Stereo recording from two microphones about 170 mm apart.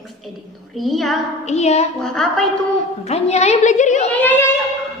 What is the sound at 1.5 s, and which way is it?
Speech, 40° left (ahead or behind).